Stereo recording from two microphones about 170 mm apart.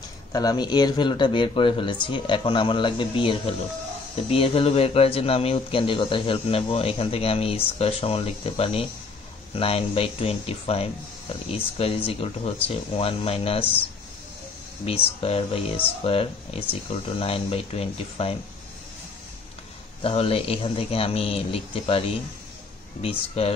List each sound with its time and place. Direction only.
0.3 s a man's voice: 20° left (ahead or behind)
14.9 s a man's voice: 35° left (ahead or behind)
20.0 s a man's voice: 35° left (ahead or behind)
23.4 s a man's voice: 35° left (ahead or behind)